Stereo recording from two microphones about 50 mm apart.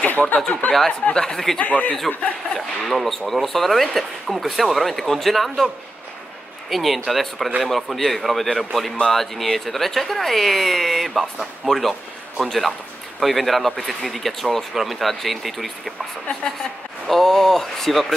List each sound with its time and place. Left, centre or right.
0.2 s speech: centre
0.6 s speech: left
1.1 s speech: centre
1.6 s speech: left
2.5 s speech: centre
6.7 s speech: centre
17.1 s speech: centre